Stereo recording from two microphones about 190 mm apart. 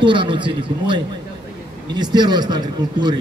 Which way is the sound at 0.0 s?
25° right (ahead or behind).